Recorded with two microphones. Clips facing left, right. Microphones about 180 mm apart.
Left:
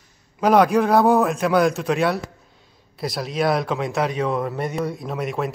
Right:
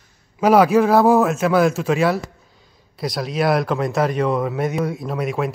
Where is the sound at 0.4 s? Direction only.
5° right (ahead or behind).